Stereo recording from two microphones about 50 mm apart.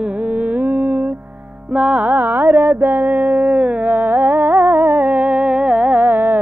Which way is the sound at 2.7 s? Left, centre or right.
Right.